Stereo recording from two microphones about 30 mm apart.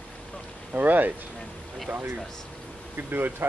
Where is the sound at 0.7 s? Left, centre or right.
Right.